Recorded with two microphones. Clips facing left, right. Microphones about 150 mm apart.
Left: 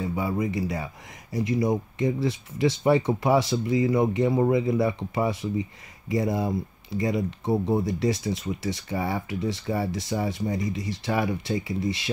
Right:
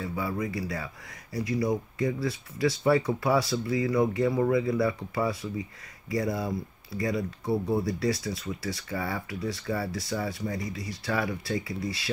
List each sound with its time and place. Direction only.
0.0 s speech: 20° left (ahead or behind)